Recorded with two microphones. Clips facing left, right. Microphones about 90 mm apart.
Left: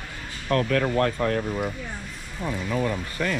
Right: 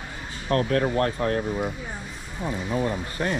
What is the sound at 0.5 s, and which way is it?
Speech, 30° right (ahead or behind).